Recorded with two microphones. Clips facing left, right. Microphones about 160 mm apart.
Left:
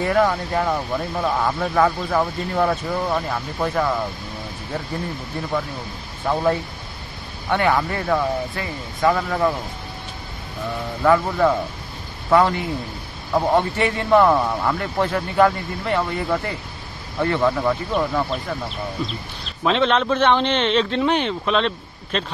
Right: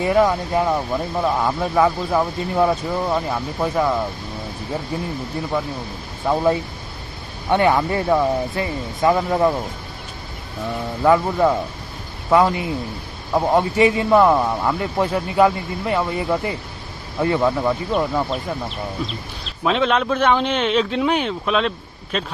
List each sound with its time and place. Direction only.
0.0 s a man's voice: 15° right (ahead or behind)
6.2 s a man's voice: 15° right (ahead or behind)
11.0 s a man's voice: 15° right (ahead or behind)
19.4 s a man's voice: 5° right (ahead or behind)